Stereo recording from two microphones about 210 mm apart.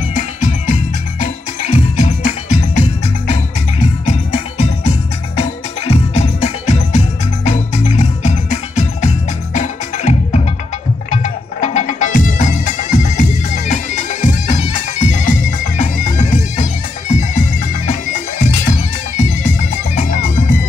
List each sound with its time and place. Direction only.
0.1 s music: 35° left (ahead or behind)
15.8 s bagpipes: 35° left (ahead or behind)
18.4 s bagpipes: 35° left (ahead or behind)